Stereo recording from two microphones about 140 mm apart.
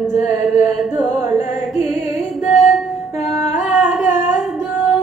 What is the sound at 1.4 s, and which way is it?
Music, 55° left (ahead or behind).